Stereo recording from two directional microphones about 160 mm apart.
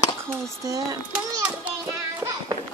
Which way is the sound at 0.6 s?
20° right (ahead or behind).